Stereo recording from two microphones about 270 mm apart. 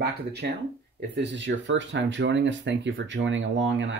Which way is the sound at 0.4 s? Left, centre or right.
Right.